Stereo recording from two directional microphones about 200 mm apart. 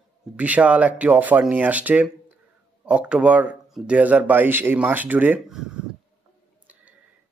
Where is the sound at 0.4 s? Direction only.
5° right (ahead or behind).